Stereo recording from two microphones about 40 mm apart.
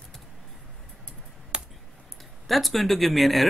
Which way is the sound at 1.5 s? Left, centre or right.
Right.